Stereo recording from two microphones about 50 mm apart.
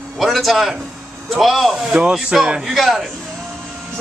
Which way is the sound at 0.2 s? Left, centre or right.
Centre.